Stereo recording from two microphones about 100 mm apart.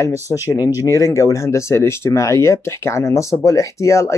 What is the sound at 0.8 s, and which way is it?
Speech, 30° left (ahead or behind).